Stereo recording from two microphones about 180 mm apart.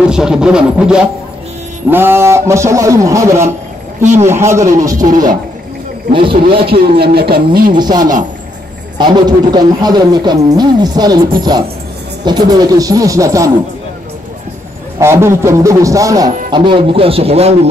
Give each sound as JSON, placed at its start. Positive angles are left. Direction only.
{"t": 0.0, "sound": "music", "side_deg": -5}
{"t": 1.9, "sound": "a man's voice", "side_deg": -10}
{"t": 4.0, "sound": "a man's voice", "side_deg": -40}
{"t": 4.3, "sound": "a man's voice", "side_deg": -15}
{"t": 6.7, "sound": "speech", "side_deg": -60}
{"t": 7.7, "sound": "a man's voice", "side_deg": -25}
{"t": 15.0, "sound": "a man's voice", "side_deg": -15}